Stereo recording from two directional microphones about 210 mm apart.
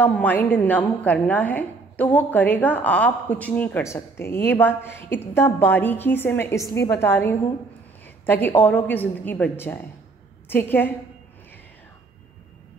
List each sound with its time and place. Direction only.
0.0 s a woman's voice: 10° left (ahead or behind)